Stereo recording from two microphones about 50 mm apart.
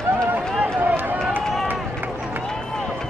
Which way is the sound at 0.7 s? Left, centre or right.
Right.